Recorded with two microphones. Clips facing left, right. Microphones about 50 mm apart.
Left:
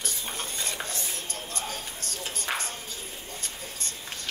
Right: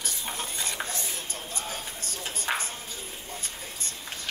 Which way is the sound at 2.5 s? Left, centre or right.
Centre.